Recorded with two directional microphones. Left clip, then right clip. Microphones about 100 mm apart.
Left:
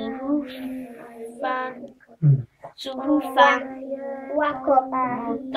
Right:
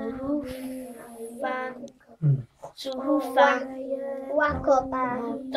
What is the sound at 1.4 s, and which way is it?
Child singing, 40° right (ahead or behind).